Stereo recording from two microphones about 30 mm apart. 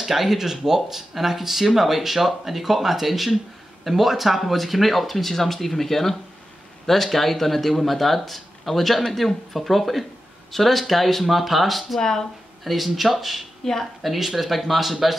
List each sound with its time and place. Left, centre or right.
0.0 s speech: centre
12.0 s speech: centre
12.6 s speech: centre